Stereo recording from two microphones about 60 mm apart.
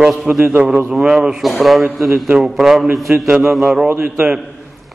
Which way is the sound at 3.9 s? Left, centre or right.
Right.